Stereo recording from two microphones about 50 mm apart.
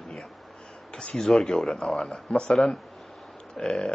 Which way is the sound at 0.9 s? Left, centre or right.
Centre.